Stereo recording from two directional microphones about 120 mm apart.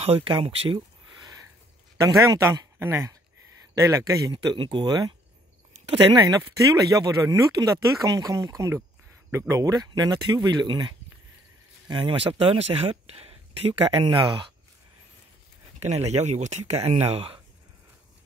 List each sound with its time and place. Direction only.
0.0 s speech: 50° right (ahead or behind)
0.7 s a sound: 35° right (ahead or behind)
2.0 s speech: 30° right (ahead or behind)
4.3 s speech: 45° right (ahead or behind)
6.1 s speech: 30° right (ahead or behind)
15.8 s speech: 65° right (ahead or behind)